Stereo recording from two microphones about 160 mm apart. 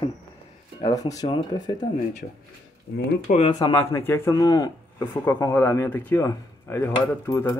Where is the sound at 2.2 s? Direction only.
80° left.